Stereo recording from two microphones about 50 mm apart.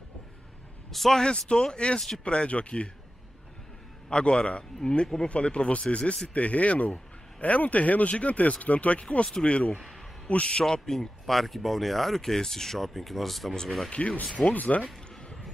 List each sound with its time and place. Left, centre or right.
0.9 s speech: centre
1.2 s speech: centre
2.0 s speech: centre
2.2 s speech: left
4.1 s speech: centre
10.6 s speech: centre
13.9 s speech: left